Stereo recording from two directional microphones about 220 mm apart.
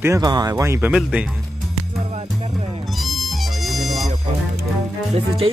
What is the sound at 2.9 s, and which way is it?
Music, centre (ahead or behind).